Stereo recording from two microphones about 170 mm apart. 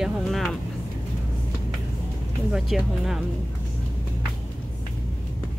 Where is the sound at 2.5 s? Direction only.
Centre (ahead or behind).